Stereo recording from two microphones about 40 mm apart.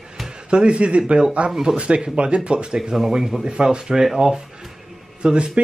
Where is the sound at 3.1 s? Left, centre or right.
Centre.